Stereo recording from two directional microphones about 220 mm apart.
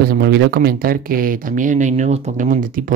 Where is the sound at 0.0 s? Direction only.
45° right (ahead or behind).